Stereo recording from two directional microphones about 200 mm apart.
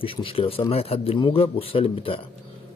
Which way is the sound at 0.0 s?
25° left (ahead or behind).